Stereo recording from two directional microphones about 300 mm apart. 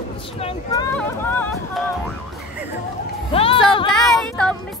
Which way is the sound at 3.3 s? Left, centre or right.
Centre.